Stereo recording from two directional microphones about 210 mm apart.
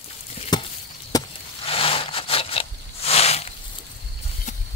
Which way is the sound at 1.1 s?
20° left (ahead or behind).